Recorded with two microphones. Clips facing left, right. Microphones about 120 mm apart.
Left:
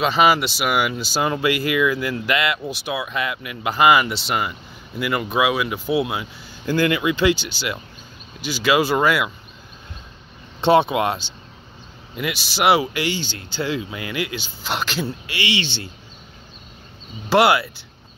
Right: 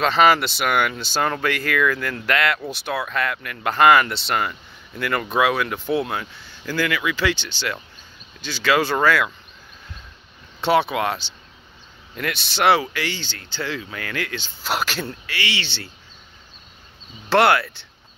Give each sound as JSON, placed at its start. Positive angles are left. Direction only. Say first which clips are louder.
{"t": 0.0, "sound": "speech", "louder": "even", "side_deg": 5}
{"t": 6.6, "sound": "speech", "louder": "left 4 dB", "side_deg": 20}
{"t": 7.3, "sound": "speech", "louder": "left 1 dB", "side_deg": 10}
{"t": 10.6, "sound": "speech", "louder": "left 3 dB", "side_deg": 20}
{"t": 12.2, "sound": "speech", "louder": "even", "side_deg": 5}
{"t": 14.6, "sound": "speech", "louder": "even", "side_deg": -5}
{"t": 15.2, "sound": "speech", "louder": "left 3 dB", "side_deg": 15}
{"t": 17.3, "sound": "speech", "louder": "left 1 dB", "side_deg": 10}